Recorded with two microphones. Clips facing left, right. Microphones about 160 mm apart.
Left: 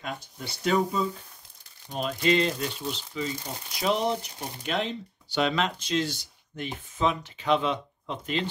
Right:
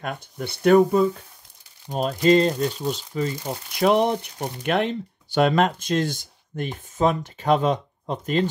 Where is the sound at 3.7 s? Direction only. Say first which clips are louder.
Right 7 dB; 60° right (ahead or behind).